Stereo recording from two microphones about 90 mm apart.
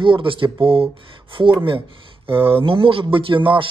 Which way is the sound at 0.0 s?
65° right (ahead or behind).